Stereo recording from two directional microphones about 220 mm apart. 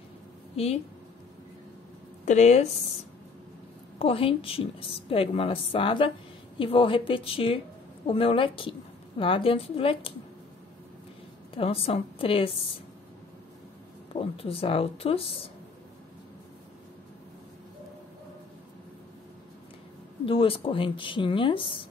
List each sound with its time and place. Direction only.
2.2 s speech: 30° left (ahead or behind)
4.0 s a woman's voice: 25° left (ahead or behind)
11.5 s a woman's voice: 25° left (ahead or behind)
14.1 s a woman's voice: 25° left (ahead or behind)
20.2 s a woman's voice: 25° left (ahead or behind)